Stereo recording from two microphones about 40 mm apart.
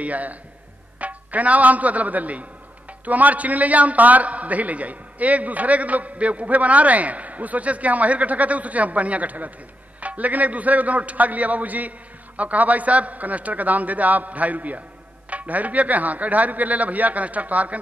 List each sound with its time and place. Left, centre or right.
0.0 s a man's voice: right